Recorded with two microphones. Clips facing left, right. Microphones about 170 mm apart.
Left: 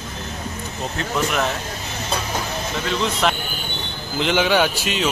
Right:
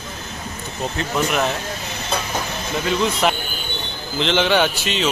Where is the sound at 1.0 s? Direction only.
5° right (ahead or behind).